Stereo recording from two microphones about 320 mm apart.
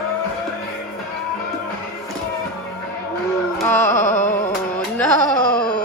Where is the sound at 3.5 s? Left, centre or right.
Centre.